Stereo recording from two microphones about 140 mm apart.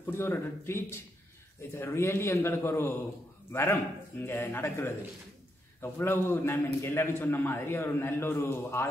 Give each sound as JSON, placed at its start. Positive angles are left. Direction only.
{"t": 0.0, "sound": "a man's voice", "side_deg": 15}
{"t": 4.3, "sound": "a man's voice", "side_deg": 15}